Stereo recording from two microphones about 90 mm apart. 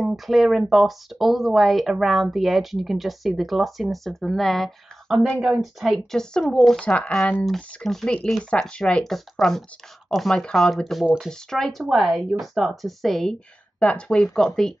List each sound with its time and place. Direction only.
0.0 s speech: centre (ahead or behind)
13.7 s speech: 15° left (ahead or behind)